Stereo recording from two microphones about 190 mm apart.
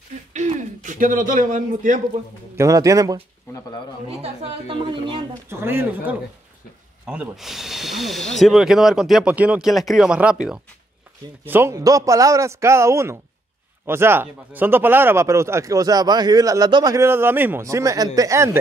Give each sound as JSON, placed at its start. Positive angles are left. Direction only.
{"t": 0.3, "sound": "a sound", "side_deg": -40}
{"t": 2.5, "sound": "speech", "side_deg": -15}
{"t": 4.2, "sound": "a woman's voice", "side_deg": -25}
{"t": 5.5, "sound": "speech", "side_deg": -10}
{"t": 11.4, "sound": "speech", "side_deg": -10}